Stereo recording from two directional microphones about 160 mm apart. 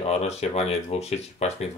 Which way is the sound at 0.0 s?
40° left (ahead or behind).